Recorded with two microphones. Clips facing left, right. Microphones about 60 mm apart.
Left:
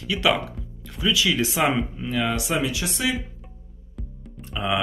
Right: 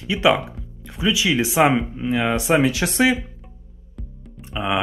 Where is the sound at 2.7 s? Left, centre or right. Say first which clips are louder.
Right 8 dB; right.